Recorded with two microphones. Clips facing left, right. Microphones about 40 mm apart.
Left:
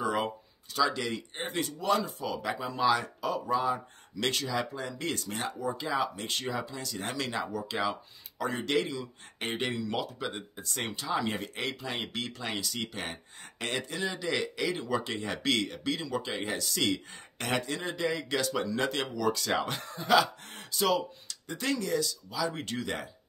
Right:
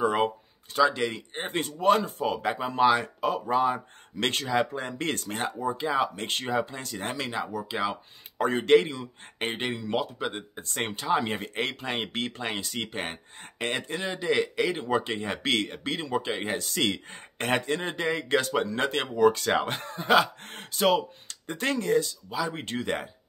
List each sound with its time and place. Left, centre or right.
0.0 s a sound: right
0.7 s speech: right
5.6 s speech: right
7.2 s speech: centre
8.4 s speech: right